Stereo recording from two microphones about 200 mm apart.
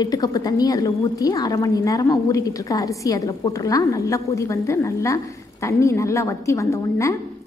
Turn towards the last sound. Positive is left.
turn(degrees=15)  # may be behind; listen again after turning